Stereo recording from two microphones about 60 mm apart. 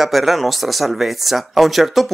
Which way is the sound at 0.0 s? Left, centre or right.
Centre.